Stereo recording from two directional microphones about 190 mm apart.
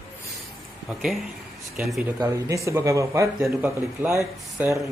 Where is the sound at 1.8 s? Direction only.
5° right (ahead or behind).